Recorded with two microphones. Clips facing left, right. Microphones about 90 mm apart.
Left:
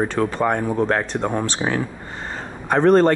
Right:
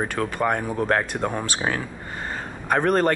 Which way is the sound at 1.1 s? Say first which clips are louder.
Left 3 dB; 10° left (ahead or behind).